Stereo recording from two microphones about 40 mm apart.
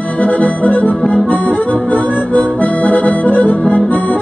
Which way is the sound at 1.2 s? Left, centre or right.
Left.